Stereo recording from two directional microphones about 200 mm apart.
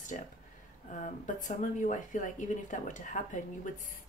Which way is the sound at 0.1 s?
40° left (ahead or behind).